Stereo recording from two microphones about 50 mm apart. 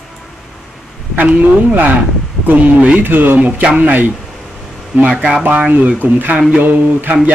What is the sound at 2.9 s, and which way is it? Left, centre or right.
Speech, right.